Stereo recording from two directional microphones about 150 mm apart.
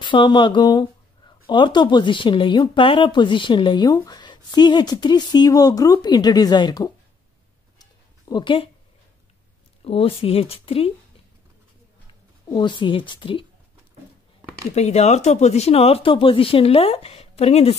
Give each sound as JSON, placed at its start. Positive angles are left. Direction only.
{"t": 0.0, "sound": "speech", "side_deg": 30}
{"t": 7.8, "sound": "a sound", "side_deg": 30}
{"t": 9.8, "sound": "speech", "side_deg": 40}
{"t": 12.5, "sound": "speech", "side_deg": 30}
{"t": 14.8, "sound": "speech", "side_deg": 45}